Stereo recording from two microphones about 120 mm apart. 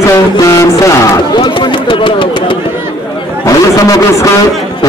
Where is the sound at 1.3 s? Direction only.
40° left (ahead or behind).